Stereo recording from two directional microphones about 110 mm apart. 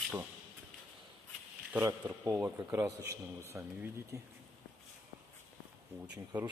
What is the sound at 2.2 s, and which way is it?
Speech, 30° right (ahead or behind).